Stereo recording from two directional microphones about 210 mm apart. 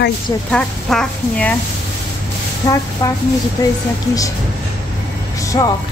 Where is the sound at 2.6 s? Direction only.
15° left (ahead or behind).